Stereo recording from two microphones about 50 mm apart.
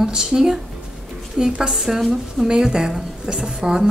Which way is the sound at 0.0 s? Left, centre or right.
Centre.